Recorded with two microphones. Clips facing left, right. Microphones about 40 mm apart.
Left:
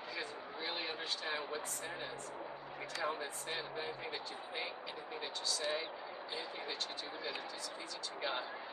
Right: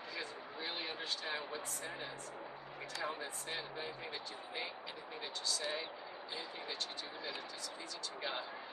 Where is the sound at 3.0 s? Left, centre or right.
Centre.